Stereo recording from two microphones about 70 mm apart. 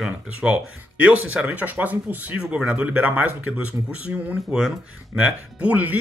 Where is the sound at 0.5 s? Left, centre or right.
Right.